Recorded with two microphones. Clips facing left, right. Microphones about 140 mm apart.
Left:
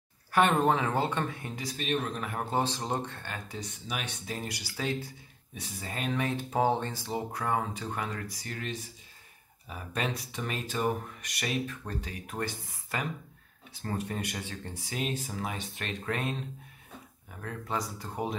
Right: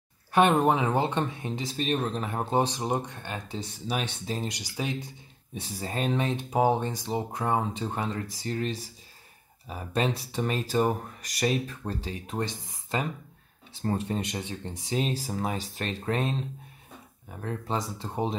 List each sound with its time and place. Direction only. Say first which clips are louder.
0.3 s speech: right 3 dB; 15° right (ahead or behind)